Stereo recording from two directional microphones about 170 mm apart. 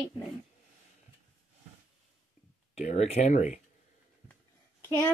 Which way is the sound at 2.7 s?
40° left (ahead or behind).